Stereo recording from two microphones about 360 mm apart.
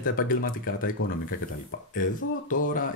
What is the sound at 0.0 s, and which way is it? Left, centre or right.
Speech, left.